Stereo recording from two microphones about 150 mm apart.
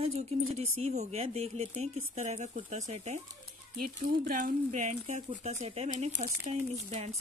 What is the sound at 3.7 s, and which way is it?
Speech, 70° right (ahead or behind).